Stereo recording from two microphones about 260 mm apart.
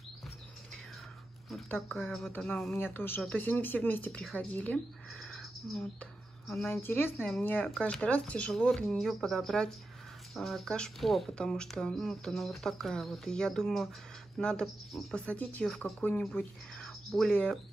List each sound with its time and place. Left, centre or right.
1.5 s speech: centre